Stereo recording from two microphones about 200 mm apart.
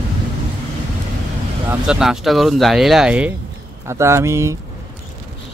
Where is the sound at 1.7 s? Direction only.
5° right (ahead or behind).